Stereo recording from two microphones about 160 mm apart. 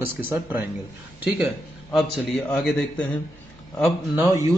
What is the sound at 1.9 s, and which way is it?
A man's voice, centre (ahead or behind).